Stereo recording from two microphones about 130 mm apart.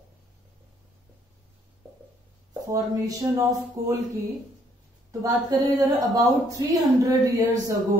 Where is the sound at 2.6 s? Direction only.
25° right (ahead or behind).